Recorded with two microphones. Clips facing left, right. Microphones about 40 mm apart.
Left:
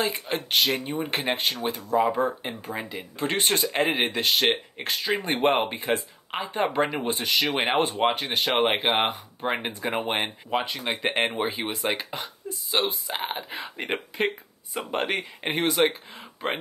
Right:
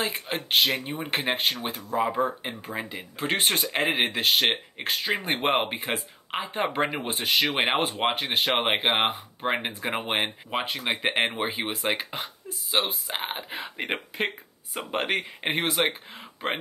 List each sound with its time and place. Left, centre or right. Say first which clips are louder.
0.0 s speech: left 2 dB; centre
0.8 s speech: left 1 dB; centre
3.3 s speech: even; centre
7.1 s speech: even; right
7.6 s speech: left 2 dB; centre
15.7 s speech: left 3 dB; centre
16.2 s a sound: left 1 dB; centre